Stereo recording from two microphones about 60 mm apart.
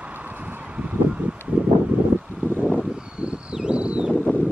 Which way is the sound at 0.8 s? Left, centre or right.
Right.